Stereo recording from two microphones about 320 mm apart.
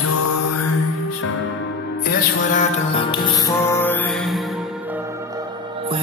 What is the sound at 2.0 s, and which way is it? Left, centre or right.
Music, left.